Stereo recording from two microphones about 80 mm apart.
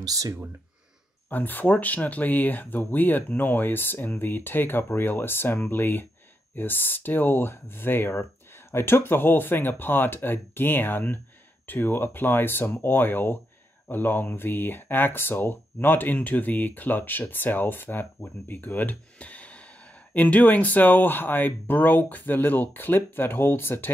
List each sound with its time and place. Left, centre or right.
0.0 s speech: right
1.3 s speech: left